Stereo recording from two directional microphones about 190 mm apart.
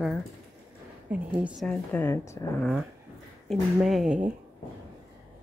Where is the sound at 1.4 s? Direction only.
5° left (ahead or behind).